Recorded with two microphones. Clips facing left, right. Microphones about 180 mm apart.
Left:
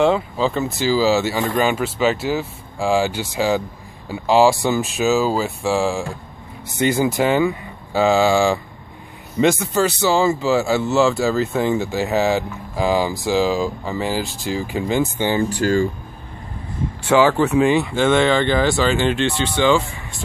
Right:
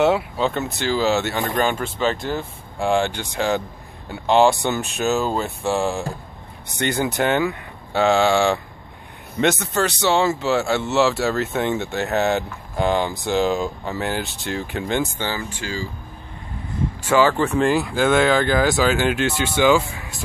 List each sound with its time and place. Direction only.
0.0 s speech: 5° right (ahead or behind)
15.5 s speech: 50° left (ahead or behind)
17.1 s speech: 10° left (ahead or behind); by 20.0 s 10° right (ahead or behind)